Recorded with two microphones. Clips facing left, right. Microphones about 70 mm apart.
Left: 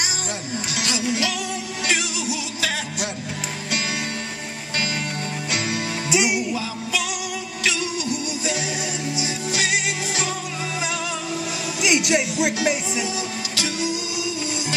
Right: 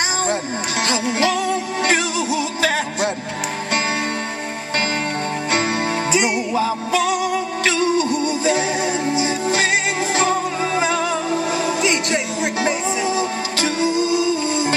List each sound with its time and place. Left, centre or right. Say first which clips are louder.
0.3 s music: right 7 dB; right
5.5 s music: right 6 dB; right
11.8 s music: right 1 dB; centre
12.5 s music: right 3 dB; right